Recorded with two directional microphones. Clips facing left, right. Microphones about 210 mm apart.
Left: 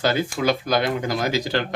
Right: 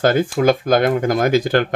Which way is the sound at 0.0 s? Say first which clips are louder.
Right 6 dB; 50° right (ahead or behind).